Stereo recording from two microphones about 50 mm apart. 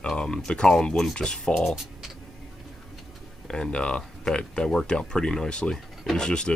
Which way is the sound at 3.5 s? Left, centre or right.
Centre.